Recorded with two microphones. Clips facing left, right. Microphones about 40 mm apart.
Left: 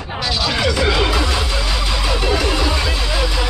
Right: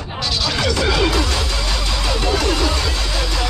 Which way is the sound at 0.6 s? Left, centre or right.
Centre.